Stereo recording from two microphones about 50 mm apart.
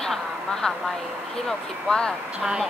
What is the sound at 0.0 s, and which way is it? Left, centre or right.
Speech, centre.